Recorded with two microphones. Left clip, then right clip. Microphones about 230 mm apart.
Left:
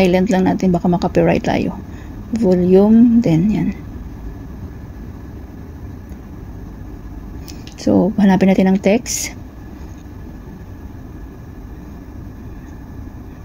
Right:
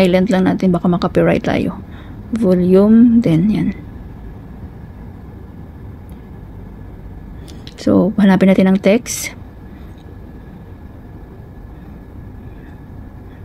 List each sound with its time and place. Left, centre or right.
0.0 s speech: centre
7.8 s speech: centre